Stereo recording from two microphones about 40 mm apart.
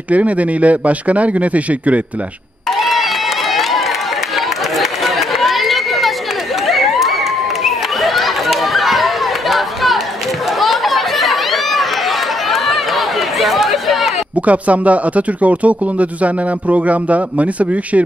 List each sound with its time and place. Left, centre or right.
0.1 s speech: right
2.7 s run: centre
6.6 s crowd: centre
10.6 s run: centre
14.3 s speech: right